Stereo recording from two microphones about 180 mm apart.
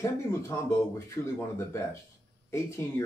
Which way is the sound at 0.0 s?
15° left (ahead or behind).